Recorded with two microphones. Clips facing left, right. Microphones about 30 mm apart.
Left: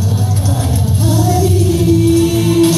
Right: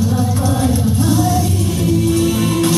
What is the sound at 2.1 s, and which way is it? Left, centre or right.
Music, right.